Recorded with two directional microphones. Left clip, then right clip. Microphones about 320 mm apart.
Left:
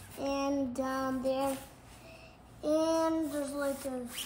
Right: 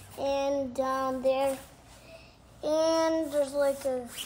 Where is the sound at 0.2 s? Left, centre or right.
Centre.